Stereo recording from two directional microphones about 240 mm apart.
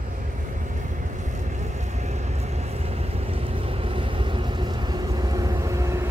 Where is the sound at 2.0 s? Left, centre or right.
Right.